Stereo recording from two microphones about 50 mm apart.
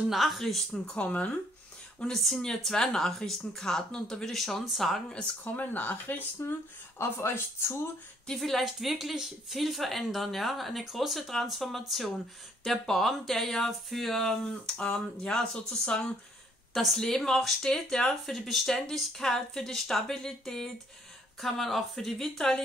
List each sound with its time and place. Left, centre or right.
0.1 s speech: centre
0.8 s speech: left
2.4 s speech: centre
5.6 s speech: left
6.4 s speech: left
7.0 s speech: left
8.3 s speech: centre
8.6 s speech: centre
14.8 s speech: centre